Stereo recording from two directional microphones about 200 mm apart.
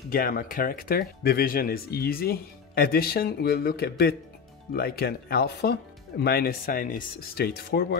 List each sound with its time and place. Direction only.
0.1 s speech: 45° left (ahead or behind)